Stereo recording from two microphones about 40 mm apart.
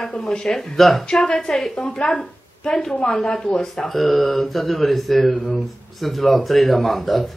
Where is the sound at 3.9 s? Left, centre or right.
Centre.